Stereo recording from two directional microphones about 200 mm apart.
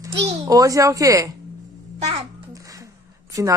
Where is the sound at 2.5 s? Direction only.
15° right (ahead or behind).